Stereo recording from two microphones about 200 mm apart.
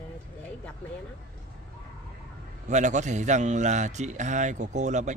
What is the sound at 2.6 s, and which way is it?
A man's voice, 35° right (ahead or behind).